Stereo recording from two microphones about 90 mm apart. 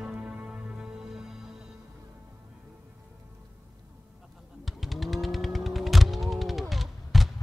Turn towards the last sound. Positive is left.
turn(degrees=0)  # may be behind; listen again after turning